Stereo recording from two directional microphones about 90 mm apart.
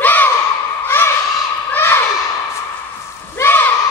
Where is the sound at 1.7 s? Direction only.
25° left (ahead or behind).